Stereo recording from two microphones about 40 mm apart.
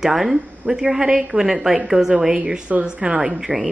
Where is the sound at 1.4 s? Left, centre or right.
Centre; by 3.3 s right.